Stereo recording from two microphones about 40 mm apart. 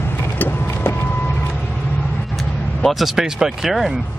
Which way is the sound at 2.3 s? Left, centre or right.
Centre.